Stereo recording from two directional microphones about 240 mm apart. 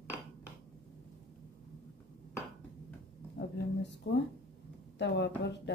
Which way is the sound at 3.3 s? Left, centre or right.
Left.